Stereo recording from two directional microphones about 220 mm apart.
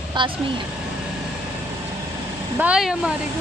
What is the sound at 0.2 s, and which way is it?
Speech, 20° right (ahead or behind).